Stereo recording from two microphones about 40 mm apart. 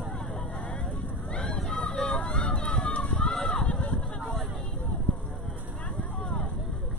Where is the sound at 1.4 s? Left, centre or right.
Centre.